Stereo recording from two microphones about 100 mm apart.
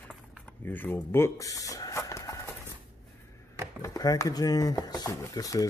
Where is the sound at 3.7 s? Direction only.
35° left (ahead or behind).